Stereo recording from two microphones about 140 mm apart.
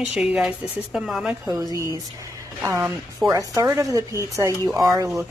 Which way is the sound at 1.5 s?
25° right (ahead or behind).